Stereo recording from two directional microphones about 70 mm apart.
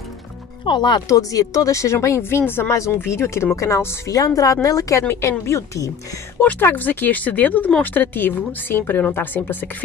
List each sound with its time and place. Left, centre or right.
0.7 s speech: left
1.1 s speech: left
4.4 s a woman's voice: left
5.0 s speech: left
6.6 s speech: left